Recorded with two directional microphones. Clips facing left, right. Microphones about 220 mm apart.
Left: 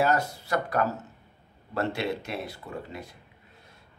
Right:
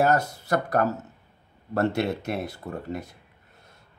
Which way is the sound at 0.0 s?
45° right (ahead or behind).